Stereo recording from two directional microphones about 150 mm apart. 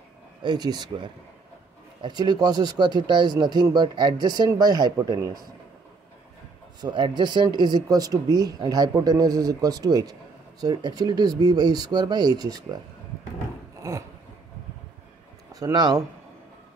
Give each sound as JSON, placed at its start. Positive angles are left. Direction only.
{"t": 0.4, "sound": "speech", "side_deg": -30}
{"t": 6.8, "sound": "speech", "side_deg": -30}
{"t": 13.8, "sound": "a sound", "side_deg": -20}
{"t": 15.5, "sound": "speech", "side_deg": -25}